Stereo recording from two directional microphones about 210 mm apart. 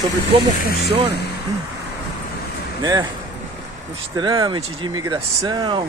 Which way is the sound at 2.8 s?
20° right (ahead or behind).